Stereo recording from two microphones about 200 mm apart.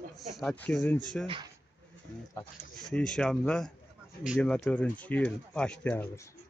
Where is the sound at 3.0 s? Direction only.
5° left (ahead or behind).